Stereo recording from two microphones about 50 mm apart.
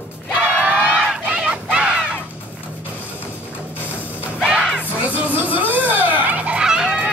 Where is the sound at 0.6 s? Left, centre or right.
Right.